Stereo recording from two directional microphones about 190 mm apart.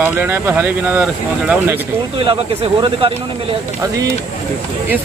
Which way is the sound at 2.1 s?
30° right (ahead or behind).